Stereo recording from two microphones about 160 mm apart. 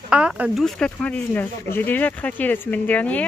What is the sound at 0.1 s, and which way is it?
Speech, 5° right (ahead or behind).